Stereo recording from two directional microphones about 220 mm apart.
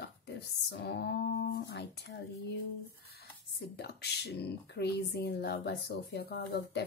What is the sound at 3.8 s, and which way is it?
Speech, 50° left (ahead or behind).